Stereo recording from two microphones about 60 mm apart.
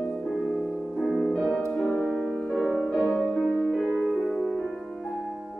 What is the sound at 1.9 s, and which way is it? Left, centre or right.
Music, centre.